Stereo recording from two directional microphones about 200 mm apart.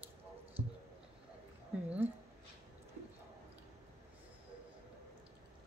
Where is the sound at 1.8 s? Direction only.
5° right (ahead or behind).